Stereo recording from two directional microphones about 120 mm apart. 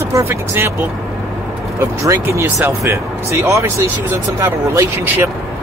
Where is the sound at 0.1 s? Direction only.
20° right (ahead or behind).